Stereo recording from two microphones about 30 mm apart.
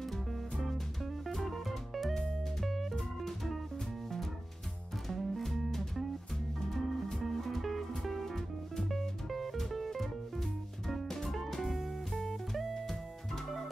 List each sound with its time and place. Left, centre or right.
1.3 s music: centre
5.0 s music: centre
11.6 s music: centre